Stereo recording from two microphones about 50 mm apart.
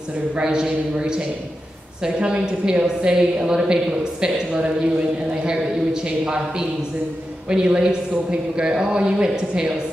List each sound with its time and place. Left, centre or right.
0.4 s a woman's voice: centre
7.4 s a woman's voice: centre